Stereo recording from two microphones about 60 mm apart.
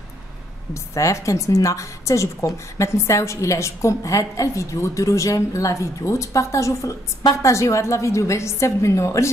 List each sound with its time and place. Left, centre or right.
0.9 s speech: left